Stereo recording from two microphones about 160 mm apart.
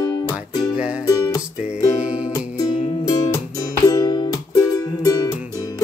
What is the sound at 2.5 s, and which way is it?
Music, 20° left (ahead or behind).